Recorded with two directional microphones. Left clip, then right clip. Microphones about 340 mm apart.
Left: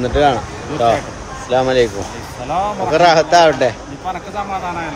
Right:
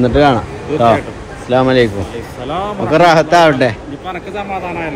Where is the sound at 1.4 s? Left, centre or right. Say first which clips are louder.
Right 3 dB; centre.